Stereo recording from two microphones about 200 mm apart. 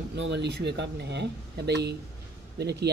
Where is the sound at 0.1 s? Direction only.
60° right (ahead or behind).